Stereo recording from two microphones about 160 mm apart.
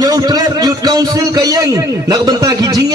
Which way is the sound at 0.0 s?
25° right (ahead or behind).